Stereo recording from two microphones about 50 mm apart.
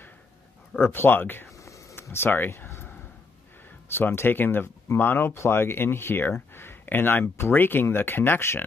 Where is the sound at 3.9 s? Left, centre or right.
Left.